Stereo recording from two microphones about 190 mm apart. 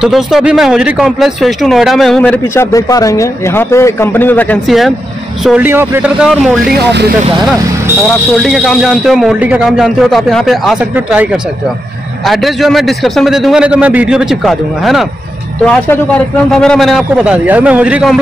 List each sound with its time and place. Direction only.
0.0 s speech: centre (ahead or behind)
6.7 s speech: 60° right (ahead or behind)
8.4 s speech: centre (ahead or behind)
12.3 s speech: centre (ahead or behind)